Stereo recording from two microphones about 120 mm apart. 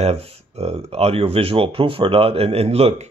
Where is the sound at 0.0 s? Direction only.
60° right (ahead or behind).